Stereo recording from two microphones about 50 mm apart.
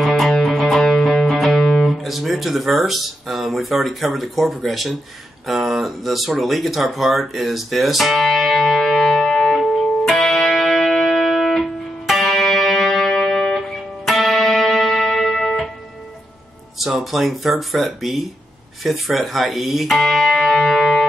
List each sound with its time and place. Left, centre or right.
0.0 s music: centre
1.4 s speech: centre
5.5 s a sound: centre
16.7 s speech: centre